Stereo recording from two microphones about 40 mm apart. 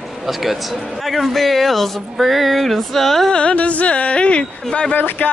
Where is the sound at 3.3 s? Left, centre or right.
Left.